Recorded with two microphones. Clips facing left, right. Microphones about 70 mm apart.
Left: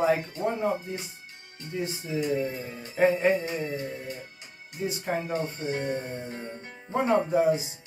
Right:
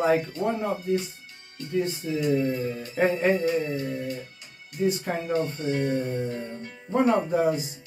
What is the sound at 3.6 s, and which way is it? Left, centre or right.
Speech, left.